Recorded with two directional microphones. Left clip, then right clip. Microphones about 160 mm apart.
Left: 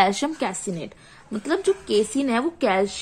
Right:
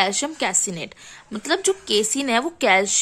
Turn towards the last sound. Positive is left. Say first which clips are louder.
# right 4 dB
turn(degrees=-25)  # may be behind; listen again after turning